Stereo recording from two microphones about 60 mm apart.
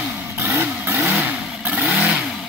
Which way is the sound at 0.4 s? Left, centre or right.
Right.